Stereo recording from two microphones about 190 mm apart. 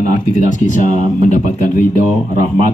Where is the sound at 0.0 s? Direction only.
40° left (ahead or behind).